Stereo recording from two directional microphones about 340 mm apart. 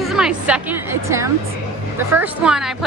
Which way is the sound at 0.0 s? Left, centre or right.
Centre.